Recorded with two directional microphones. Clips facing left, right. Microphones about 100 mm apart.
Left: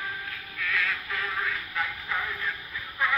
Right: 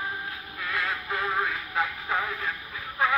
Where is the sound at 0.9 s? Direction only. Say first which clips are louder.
Right 4 dB; 30° right (ahead or behind).